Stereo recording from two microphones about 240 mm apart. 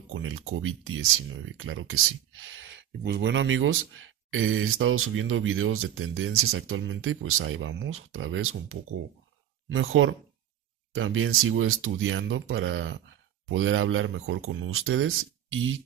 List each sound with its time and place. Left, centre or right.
0.1 s speech: right